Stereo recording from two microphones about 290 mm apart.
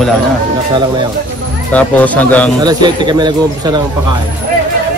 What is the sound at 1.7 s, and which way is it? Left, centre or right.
Speech, centre.